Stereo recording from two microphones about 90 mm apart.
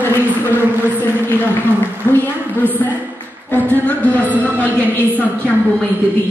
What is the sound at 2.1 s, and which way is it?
A woman's voice, 20° left (ahead or behind).